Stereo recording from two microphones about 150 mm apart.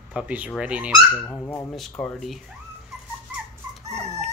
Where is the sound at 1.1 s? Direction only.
15° left (ahead or behind).